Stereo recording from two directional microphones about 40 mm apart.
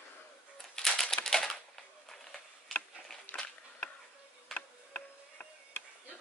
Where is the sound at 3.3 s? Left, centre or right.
Left.